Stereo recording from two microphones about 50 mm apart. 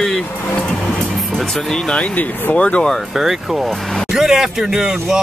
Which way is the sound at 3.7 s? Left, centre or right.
Centre.